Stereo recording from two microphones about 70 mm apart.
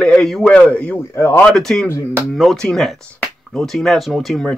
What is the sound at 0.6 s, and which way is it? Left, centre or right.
Speech, left.